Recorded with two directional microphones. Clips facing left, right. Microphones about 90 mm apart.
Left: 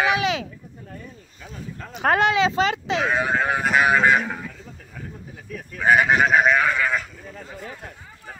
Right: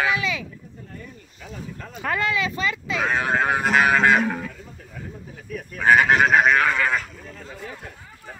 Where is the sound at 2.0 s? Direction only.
85° left.